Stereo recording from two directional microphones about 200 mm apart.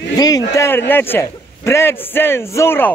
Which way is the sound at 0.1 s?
20° left (ahead or behind).